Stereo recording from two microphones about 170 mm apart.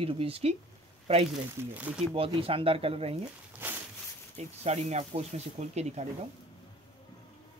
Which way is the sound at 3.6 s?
10° right (ahead or behind).